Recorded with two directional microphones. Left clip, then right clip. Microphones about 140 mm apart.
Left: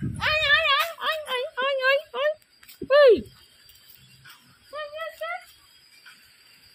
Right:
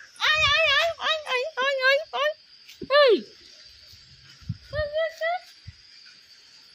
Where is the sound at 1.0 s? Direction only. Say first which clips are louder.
Right 2 dB; 90° right.